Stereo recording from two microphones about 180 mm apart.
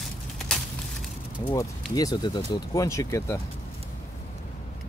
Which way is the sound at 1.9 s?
20° left (ahead or behind).